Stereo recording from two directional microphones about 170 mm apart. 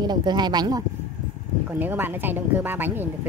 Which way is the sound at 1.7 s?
10° right (ahead or behind).